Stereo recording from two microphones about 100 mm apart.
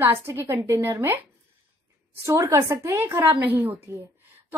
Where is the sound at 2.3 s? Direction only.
30° right (ahead or behind).